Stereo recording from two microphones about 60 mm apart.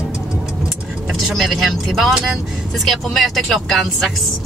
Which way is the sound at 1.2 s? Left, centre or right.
Centre.